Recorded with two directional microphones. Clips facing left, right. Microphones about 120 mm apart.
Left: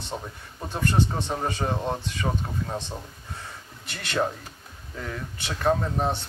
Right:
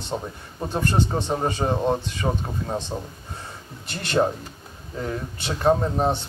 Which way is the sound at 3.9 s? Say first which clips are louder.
Right 5 dB; 30° right (ahead or behind).